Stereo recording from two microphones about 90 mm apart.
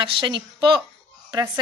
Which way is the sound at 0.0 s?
70° right (ahead or behind).